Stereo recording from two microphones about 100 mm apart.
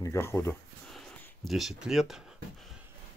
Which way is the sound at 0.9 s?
Centre (ahead or behind).